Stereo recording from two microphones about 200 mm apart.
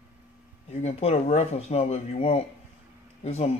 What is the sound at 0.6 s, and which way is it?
Speech, 35° left (ahead or behind).